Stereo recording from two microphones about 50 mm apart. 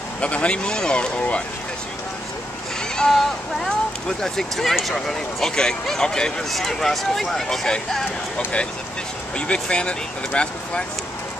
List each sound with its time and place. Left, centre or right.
0.2 s speech: left
3.0 s speech: centre
9.5 s speech: left